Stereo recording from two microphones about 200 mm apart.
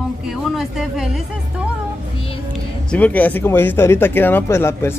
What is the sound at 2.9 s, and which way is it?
Speech, 10° left (ahead or behind).